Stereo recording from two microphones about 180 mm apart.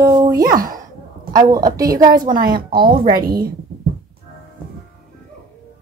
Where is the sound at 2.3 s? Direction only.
55° right (ahead or behind).